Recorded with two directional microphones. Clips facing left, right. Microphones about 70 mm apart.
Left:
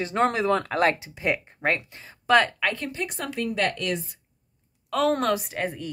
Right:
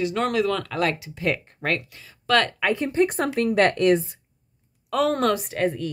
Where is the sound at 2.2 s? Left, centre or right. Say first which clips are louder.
Left 1 dB; centre.